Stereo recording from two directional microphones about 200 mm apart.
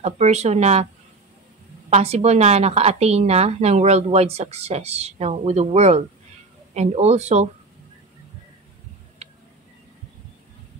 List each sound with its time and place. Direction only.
0.0 s a woman's voice: 35° right (ahead or behind)
1.9 s a woman's voice: 35° right (ahead or behind)